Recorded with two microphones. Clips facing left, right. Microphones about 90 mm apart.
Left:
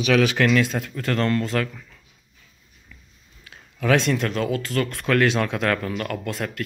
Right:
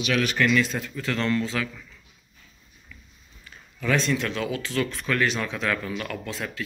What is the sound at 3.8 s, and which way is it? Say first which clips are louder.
Speech: left 4 dB; 60° left (ahead or behind).